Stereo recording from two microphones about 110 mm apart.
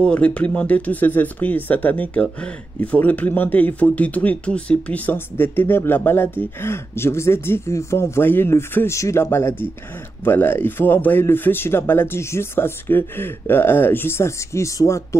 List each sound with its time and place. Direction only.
0.0 s speech: 10° left (ahead or behind); by 15.0 s 30° left (ahead or behind)